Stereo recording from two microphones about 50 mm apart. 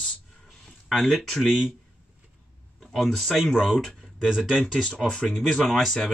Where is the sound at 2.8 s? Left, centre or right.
Centre.